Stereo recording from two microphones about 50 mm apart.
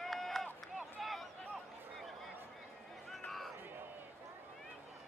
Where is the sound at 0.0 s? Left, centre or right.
Centre.